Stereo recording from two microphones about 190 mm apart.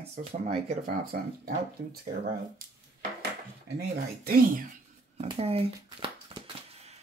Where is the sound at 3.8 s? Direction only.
50° right (ahead or behind).